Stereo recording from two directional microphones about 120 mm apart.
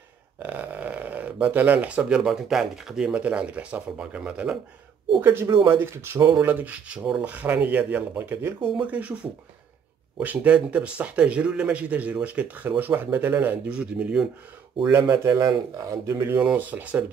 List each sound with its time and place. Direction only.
0.4 s speech: 15° right (ahead or behind)
5.2 s a man's voice: 20° right (ahead or behind)
14.8 s a man's voice: 20° right (ahead or behind)
16.3 s speech: 10° right (ahead or behind)